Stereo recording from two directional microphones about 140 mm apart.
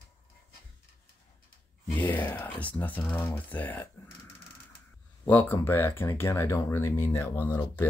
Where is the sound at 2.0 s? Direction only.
10° left (ahead or behind).